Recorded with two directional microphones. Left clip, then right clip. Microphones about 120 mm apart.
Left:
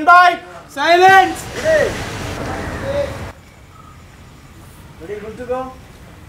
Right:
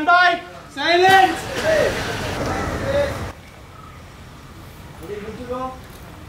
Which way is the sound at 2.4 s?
5° left (ahead or behind).